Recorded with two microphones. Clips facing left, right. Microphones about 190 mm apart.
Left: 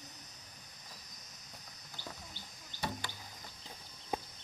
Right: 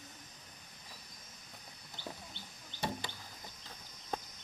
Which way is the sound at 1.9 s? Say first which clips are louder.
Right 2 dB; 20° right (ahead or behind).